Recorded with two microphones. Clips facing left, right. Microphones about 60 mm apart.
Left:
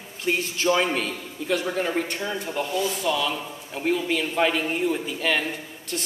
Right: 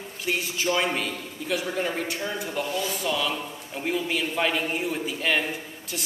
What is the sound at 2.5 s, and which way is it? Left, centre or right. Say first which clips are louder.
A man's voice: left 4 dB; centre.